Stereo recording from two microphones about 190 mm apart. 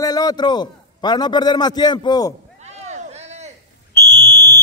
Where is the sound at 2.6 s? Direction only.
35° right (ahead or behind).